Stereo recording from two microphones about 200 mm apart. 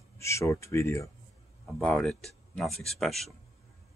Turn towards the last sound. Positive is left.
turn(degrees=0)  # may be behind; listen again after turning